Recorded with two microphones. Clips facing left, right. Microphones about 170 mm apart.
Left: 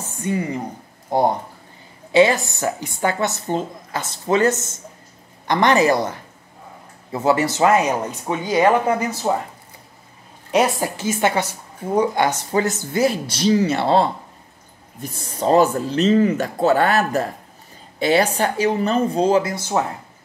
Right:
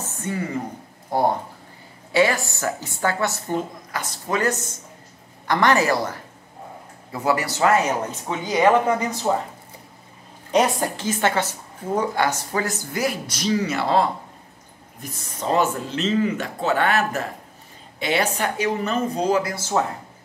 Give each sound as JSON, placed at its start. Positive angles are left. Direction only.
{"t": 0.2, "sound": "a woman's voice", "side_deg": 15}
{"t": 10.5, "sound": "a woman's voice", "side_deg": 5}